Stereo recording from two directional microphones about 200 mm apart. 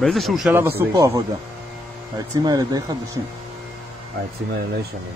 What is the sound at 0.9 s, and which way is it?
Speech, 15° right (ahead or behind).